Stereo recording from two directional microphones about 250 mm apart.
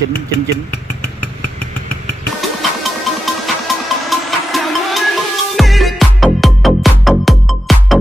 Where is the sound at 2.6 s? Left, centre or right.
Centre.